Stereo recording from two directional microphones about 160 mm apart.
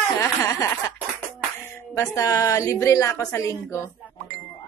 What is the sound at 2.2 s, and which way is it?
A woman's voice, 20° left (ahead or behind).